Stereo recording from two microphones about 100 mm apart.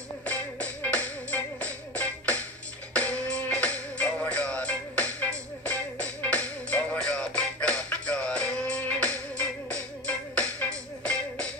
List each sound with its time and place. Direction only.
0.2 s music: 15° left (ahead or behind)